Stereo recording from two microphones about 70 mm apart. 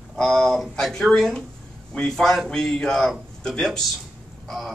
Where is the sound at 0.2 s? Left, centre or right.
Centre.